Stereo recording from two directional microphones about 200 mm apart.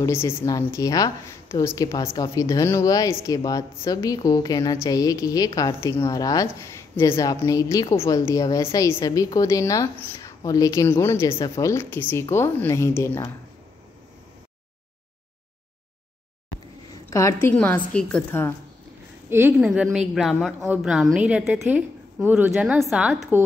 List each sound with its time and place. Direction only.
0.0 s a woman's voice: 10° left (ahead or behind)
17.1 s a woman's voice: 15° left (ahead or behind)
19.2 s a woman's voice: 10° right (ahead or behind)